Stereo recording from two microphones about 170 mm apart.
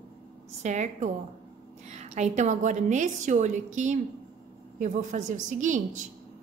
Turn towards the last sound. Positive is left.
turn(degrees=-50)  # may be behind; listen again after turning